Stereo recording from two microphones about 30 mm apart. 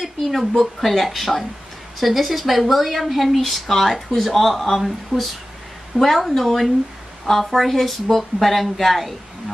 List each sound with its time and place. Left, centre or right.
0.0 s speech: centre
3.4 s speech: centre